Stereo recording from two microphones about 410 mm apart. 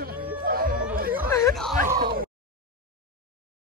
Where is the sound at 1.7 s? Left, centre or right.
Right.